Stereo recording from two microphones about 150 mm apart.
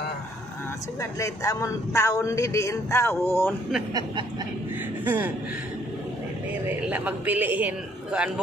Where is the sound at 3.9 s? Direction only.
25° right (ahead or behind).